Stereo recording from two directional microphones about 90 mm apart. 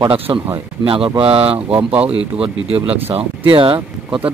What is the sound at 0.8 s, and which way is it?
Speech, 80° right.